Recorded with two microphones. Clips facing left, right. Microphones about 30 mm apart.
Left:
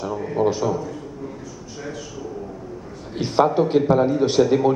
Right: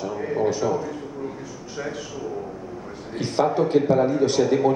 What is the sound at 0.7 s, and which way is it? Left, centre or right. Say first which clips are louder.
Speech: even; centre.